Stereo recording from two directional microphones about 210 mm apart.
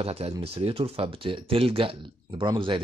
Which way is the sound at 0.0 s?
30° right (ahead or behind).